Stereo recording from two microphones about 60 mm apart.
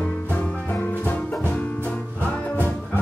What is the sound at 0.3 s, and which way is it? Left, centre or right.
Music, left.